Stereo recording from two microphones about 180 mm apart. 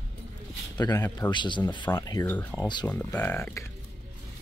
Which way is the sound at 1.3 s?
25° left (ahead or behind).